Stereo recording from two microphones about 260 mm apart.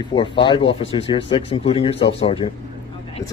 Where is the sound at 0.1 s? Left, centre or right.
Centre.